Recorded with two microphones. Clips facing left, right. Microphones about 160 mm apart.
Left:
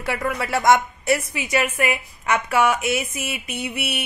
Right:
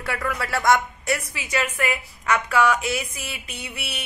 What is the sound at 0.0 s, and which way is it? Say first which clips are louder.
Speech: left 3 dB; 25° left (ahead or behind).